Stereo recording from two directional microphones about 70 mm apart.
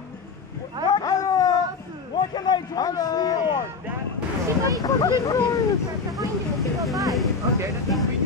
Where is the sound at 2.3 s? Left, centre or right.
Left.